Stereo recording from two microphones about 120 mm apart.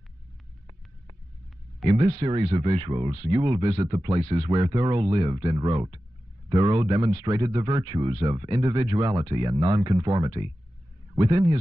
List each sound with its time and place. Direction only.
1.9 s speech: 55° right (ahead or behind)